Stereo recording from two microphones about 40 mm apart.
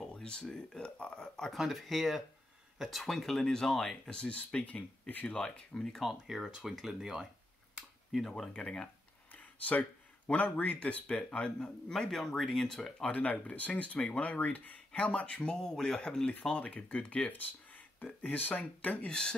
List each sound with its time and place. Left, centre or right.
0.1 s speech: left
1.5 s speech: centre
4.0 s speech: left
5.6 s speech: left
5.9 s speech: centre
8.3 s speech: left
9.3 s a sound: left
10.6 s speech: left
12.1 s speech: centre
13.0 s speech: left
14.9 s speech: left
16.5 s speech: left
17.0 s speech: left
19.0 s speech: left